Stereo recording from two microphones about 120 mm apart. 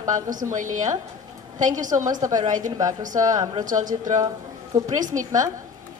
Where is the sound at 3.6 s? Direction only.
90° right.